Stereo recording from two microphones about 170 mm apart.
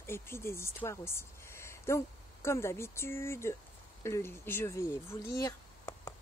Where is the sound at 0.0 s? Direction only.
15° left (ahead or behind).